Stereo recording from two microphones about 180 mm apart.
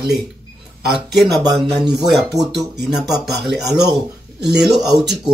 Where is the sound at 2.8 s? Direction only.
Centre (ahead or behind).